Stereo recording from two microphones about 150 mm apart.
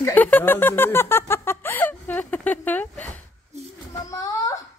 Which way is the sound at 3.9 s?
25° left (ahead or behind).